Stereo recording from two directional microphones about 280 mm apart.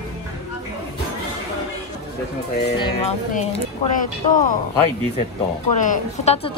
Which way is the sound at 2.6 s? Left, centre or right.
Left.